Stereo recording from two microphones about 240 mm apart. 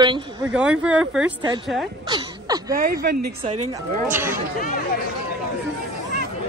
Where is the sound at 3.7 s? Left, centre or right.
Centre.